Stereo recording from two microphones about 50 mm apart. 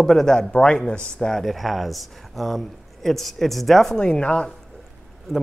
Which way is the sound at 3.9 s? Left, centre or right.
Centre.